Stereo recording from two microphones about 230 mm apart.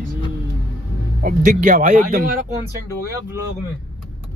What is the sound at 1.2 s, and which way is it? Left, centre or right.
Speech, right.